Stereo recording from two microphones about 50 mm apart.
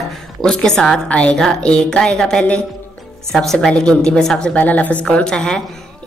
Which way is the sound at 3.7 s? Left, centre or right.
Centre.